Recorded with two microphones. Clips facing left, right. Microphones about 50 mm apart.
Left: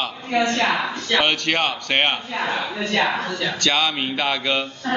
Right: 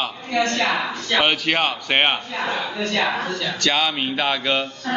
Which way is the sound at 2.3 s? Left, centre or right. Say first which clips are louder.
Even; centre.